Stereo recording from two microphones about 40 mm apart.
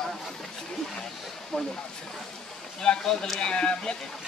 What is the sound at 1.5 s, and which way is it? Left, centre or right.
Speech, centre.